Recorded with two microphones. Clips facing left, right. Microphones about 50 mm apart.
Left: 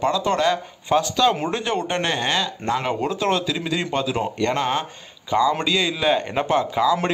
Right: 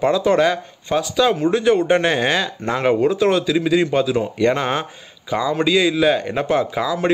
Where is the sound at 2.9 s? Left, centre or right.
Centre.